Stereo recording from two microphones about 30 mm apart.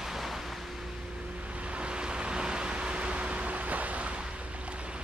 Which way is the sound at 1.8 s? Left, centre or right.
Right.